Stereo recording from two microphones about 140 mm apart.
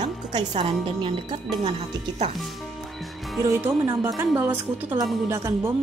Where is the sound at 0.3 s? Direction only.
35° right (ahead or behind).